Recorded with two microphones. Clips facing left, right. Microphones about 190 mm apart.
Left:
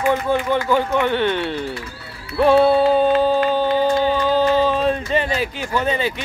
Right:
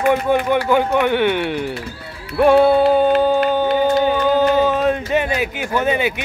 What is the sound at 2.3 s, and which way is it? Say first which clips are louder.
Music: right 2 dB; 15° right (ahead or behind).